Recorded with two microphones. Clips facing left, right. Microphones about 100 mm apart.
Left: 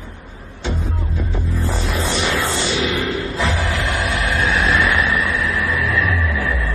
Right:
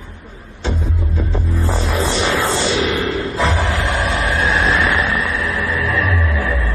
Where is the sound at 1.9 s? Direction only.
30° right (ahead or behind).